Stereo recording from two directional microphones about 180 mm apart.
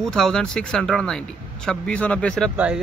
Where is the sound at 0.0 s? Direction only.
Centre (ahead or behind).